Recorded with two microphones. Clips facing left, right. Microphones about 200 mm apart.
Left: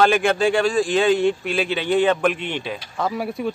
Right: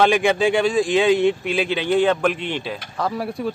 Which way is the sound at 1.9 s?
10° left (ahead or behind).